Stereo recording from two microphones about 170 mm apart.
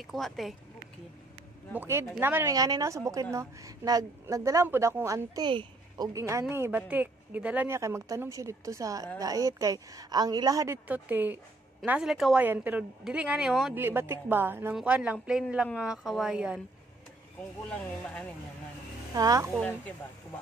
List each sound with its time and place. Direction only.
0.0 s a woman's voice: centre (ahead or behind)
1.8 s a woman's voice: 15° right (ahead or behind)
17.6 s speech: 5° left (ahead or behind)
19.1 s a woman's voice: 20° right (ahead or behind)